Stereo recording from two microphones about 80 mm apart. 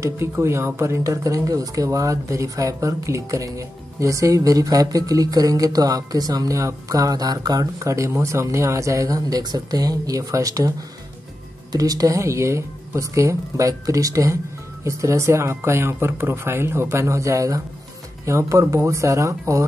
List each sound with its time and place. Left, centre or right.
0.0 s speech: right
11.7 s speech: right